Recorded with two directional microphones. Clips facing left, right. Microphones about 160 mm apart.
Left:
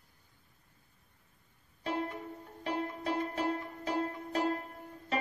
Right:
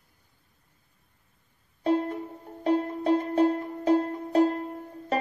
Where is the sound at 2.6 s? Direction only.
40° right (ahead or behind).